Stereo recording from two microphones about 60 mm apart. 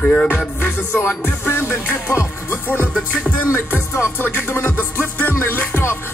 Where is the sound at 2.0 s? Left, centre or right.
Left.